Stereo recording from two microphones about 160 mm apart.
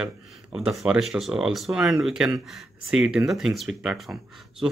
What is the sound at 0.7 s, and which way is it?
Speech, 5° right (ahead or behind).